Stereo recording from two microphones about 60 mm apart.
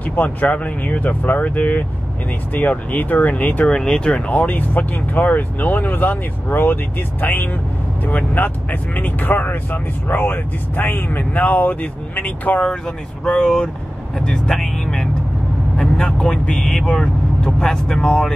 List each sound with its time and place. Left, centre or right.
0.0 s speech: left
3.6 s speech: centre
12.8 s speech: centre